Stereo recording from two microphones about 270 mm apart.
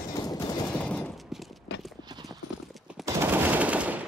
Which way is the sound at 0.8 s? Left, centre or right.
Centre.